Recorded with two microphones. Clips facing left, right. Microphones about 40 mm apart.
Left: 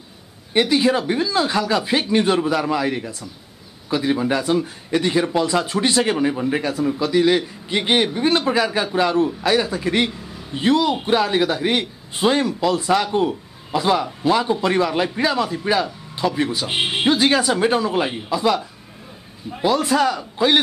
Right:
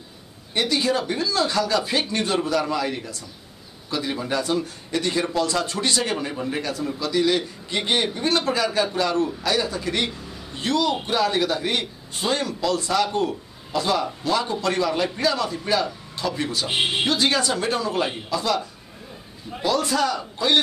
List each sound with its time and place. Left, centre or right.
0.5 s speech: centre
19.6 s speech: centre